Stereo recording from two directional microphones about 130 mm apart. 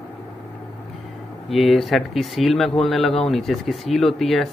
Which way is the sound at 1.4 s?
Centre (ahead or behind).